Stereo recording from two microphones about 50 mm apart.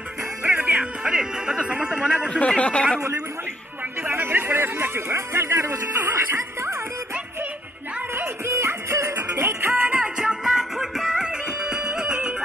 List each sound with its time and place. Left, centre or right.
0.4 s music: right
1.0 s music: centre
2.2 s speech: centre
4.1 s a sound: right
6.1 s music: right
8.2 s music: right
9.1 s music: right
9.5 s music: right
9.8 s music: right